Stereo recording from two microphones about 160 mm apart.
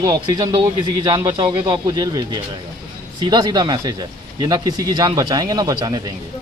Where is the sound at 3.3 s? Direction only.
25° right (ahead or behind).